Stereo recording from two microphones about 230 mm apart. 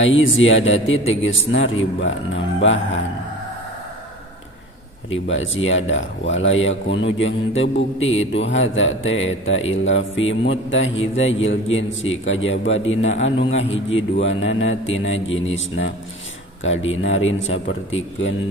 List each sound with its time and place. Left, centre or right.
0.0 s speech: left
5.1 s speech: left